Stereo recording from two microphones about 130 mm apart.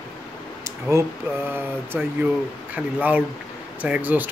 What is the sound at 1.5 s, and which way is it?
Speech, 15° right (ahead or behind).